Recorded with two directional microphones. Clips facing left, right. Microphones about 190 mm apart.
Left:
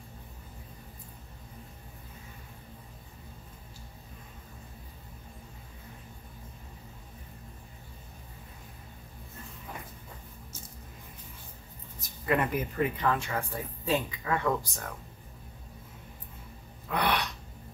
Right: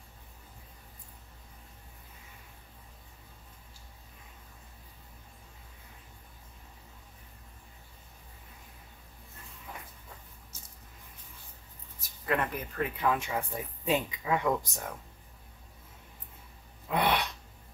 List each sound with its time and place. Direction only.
12.3 s speech: 5° left (ahead or behind)
12.9 s speech: 5° right (ahead or behind)
13.2 s speech: 20° right (ahead or behind)
16.9 s gasp: 25° right (ahead or behind)